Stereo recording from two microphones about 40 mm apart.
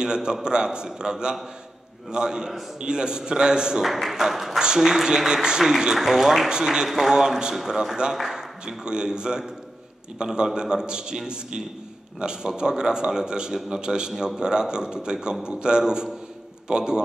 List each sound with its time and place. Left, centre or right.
0.0 s a man's voice: centre
3.8 s speech: centre
4.6 s speech: centre
6.5 s a man's voice: centre
8.6 s a man's voice: centre